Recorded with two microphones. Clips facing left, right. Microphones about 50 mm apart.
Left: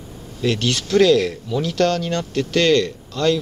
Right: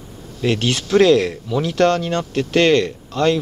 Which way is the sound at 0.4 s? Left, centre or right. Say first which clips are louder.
Right 1 dB; right.